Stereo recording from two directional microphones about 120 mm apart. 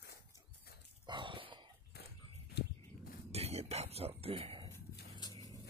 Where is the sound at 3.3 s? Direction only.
60° right (ahead or behind).